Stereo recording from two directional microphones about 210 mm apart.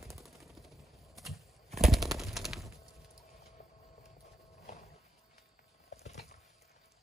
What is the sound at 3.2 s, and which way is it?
Vehicle, 30° left (ahead or behind).